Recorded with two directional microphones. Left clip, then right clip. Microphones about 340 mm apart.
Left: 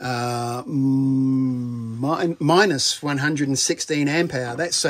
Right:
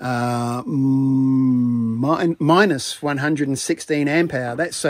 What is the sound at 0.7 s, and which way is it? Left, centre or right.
Mantra, right.